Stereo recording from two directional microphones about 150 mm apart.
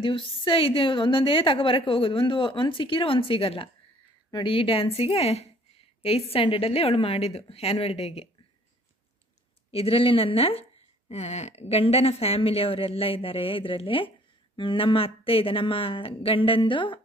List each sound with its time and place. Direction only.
0.0 s speech: 35° left (ahead or behind)
9.7 s speech: 40° left (ahead or behind)